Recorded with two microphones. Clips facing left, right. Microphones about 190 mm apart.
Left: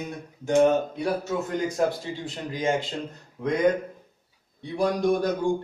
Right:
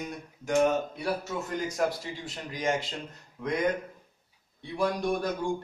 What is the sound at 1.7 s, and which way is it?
Speech, 25° left (ahead or behind).